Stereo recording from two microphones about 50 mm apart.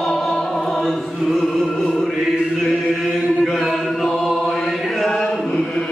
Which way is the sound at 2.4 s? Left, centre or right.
Centre.